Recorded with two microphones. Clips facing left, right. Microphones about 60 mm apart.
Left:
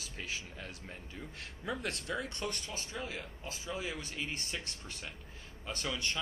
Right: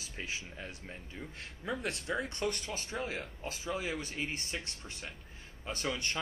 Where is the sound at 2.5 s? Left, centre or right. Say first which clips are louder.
Right 3 dB; right.